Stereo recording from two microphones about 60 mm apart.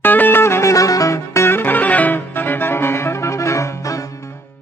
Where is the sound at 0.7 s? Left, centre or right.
Left.